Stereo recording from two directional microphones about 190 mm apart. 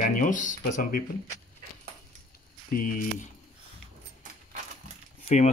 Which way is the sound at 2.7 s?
45° left (ahead or behind).